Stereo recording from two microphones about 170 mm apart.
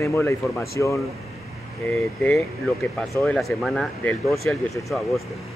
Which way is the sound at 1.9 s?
5° left (ahead or behind).